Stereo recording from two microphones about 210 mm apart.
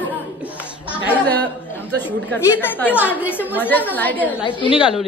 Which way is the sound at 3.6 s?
10° left (ahead or behind).